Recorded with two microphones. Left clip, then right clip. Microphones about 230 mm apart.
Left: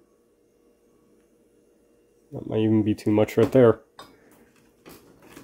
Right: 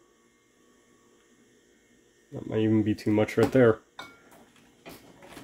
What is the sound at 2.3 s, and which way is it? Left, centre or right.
Speech, centre.